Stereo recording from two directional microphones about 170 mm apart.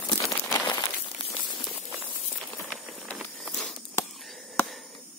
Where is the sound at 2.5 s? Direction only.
5° left (ahead or behind).